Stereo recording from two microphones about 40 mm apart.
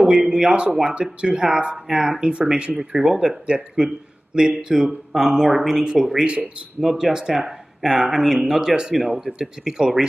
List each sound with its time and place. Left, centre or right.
0.0 s speech: centre
7.3 s speech: centre